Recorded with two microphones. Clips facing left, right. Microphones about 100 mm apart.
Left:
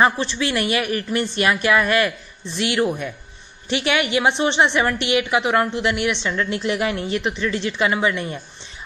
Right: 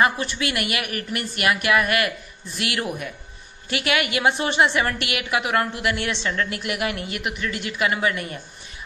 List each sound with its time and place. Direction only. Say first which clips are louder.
0.0 s a woman's voice: left 3 dB; 30° left (ahead or behind)